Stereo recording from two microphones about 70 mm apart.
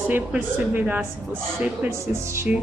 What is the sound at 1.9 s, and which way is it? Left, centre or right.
Speech, right.